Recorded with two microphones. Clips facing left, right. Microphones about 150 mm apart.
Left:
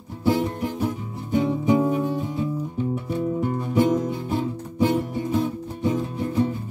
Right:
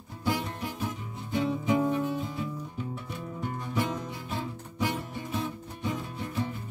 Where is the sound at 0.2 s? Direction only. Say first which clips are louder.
Left 9 dB; 25° left (ahead or behind).